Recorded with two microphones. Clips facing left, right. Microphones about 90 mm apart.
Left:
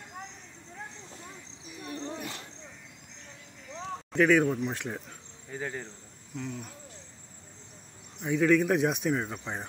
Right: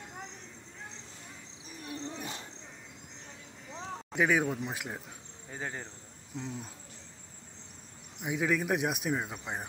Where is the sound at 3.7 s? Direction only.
10° right (ahead or behind).